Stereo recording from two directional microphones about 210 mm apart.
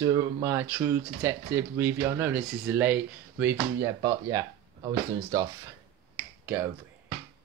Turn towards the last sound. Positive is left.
turn(degrees=-10)  # may be behind; listen again after turning